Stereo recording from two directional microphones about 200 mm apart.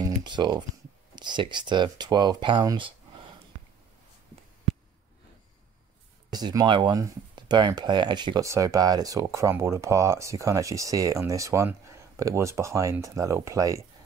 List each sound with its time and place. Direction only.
0.2 s speech: 20° right (ahead or behind)
6.3 s speech: 20° right (ahead or behind)